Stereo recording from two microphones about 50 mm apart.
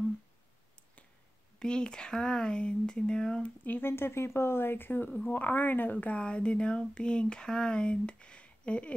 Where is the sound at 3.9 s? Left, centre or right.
Left.